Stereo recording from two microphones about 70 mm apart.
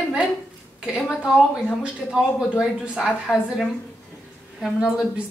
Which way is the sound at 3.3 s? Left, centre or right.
Left.